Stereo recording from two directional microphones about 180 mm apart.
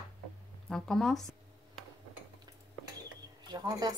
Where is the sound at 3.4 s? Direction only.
20° right (ahead or behind).